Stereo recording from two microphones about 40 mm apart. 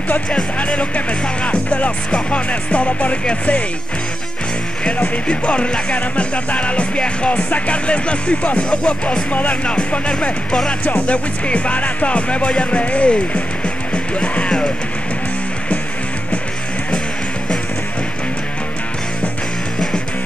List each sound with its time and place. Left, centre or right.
0.3 s speech: left
2.0 s music: left
5.0 s music: left
9.3 s music: left
9.7 s speech: left
10.9 s music: left